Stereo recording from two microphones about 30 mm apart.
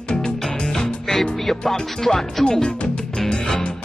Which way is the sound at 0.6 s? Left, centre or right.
Left.